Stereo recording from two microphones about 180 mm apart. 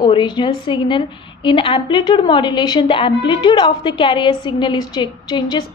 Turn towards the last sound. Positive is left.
turn(degrees=25)  # may be behind; listen again after turning